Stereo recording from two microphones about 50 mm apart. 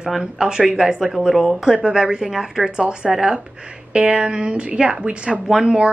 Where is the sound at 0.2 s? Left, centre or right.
Centre.